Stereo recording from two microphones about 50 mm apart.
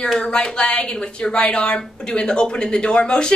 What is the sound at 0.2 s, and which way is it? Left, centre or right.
A woman's voice, centre.